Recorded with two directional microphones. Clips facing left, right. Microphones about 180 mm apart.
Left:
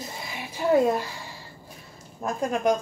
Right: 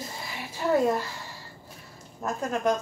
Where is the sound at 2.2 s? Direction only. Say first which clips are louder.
Left 2 dB; 15° left (ahead or behind).